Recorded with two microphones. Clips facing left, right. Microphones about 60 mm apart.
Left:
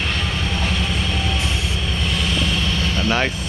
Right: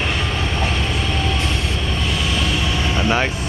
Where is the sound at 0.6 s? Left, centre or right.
Centre.